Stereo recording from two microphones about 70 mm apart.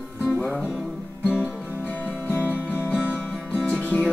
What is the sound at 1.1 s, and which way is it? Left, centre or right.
Music, centre.